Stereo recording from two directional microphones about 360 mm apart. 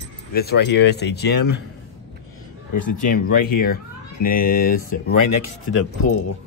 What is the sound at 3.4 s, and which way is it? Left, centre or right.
Speech, left.